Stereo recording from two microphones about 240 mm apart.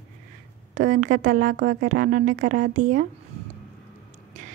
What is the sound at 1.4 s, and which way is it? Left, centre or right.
Speech, right.